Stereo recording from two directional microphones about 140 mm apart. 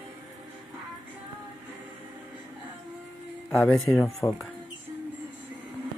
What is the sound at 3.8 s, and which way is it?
Speech, 20° left (ahead or behind).